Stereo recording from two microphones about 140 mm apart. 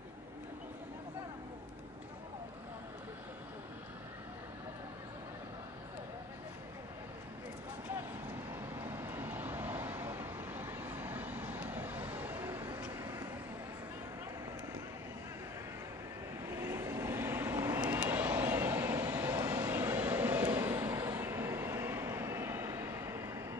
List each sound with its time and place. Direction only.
8.8 s vehicle: 15° right (ahead or behind)
16.4 s vehicle: 20° right (ahead or behind)